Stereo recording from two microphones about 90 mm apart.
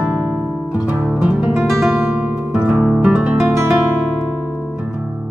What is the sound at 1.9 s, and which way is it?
Music, 20° right (ahead or behind).